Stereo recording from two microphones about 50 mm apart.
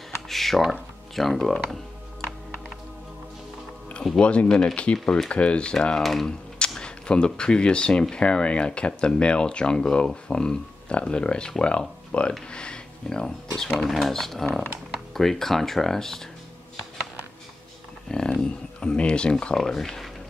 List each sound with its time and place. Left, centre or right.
0.3 s speech: centre
4.2 s speech: left
13.6 s speech: centre
18.0 s speech: centre
19.5 s speech: centre